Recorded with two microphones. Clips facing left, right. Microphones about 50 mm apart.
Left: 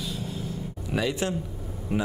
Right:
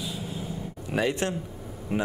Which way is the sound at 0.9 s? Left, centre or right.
Right.